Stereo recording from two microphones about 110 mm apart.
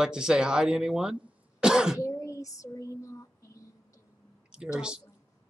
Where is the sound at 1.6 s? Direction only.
5° right (ahead or behind).